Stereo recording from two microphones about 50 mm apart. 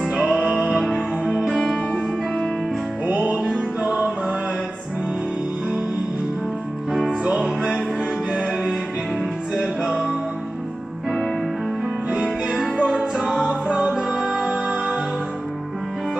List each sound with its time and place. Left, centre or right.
0.0 s music: centre
0.5 s music: centre
1.9 s music: centre
3.1 s music: right
7.1 s music: centre
9.6 s music: centre
13.1 s music: centre